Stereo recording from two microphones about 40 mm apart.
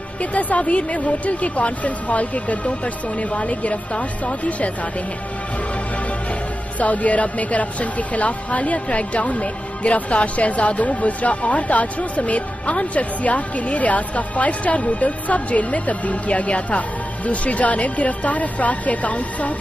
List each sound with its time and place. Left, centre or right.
0.2 s a woman's voice: left
6.8 s a woman's voice: left